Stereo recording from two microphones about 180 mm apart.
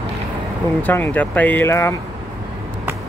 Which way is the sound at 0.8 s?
10° left (ahead or behind).